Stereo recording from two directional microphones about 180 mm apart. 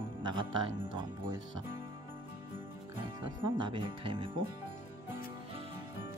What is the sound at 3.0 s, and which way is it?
Speech, 25° right (ahead or behind).